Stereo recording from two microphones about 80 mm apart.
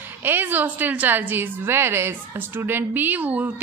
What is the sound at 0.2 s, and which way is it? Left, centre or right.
A woman's voice, right.